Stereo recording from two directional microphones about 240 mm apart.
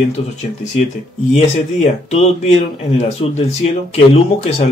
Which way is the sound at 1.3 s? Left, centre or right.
Left.